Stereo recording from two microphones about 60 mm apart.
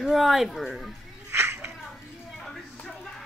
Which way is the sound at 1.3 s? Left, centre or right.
Right.